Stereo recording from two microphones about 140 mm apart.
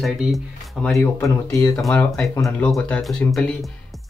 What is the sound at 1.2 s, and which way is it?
Speech, 20° left (ahead or behind).